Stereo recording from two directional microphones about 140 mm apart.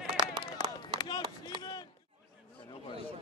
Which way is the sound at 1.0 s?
30° left (ahead or behind).